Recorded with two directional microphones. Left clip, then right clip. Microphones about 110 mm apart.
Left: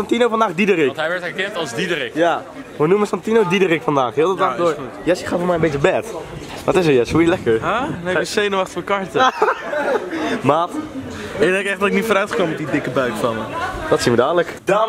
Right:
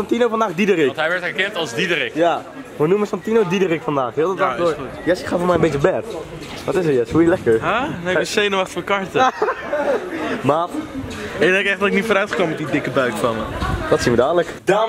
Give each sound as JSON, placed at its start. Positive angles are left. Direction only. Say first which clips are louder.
{"t": 0.1, "sound": "a man's voice", "louder": "left 2 dB", "side_deg": 5}
{"t": 2.9, "sound": "a man's voice", "louder": "left 2 dB", "side_deg": 10}
{"t": 5.4, "sound": "speech", "louder": "right 1 dB", "side_deg": -15}
{"t": 6.6, "sound": "speech", "louder": "left 3 dB", "side_deg": 40}
{"t": 7.6, "sound": "a man's voice", "louder": "even", "side_deg": 5}
{"t": 10.4, "sound": "a man's voice", "louder": "left 1 dB", "side_deg": 5}